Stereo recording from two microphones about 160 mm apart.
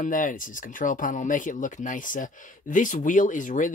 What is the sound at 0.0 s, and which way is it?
Speech, 55° left (ahead or behind).